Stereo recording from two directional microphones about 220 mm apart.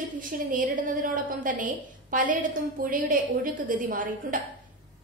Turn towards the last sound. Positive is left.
turn(degrees=-35)  # may be behind; listen again after turning